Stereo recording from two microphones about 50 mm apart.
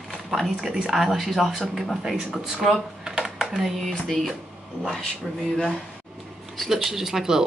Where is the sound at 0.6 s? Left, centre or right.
Centre.